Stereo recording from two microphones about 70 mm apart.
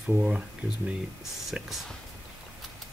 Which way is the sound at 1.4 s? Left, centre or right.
Centre.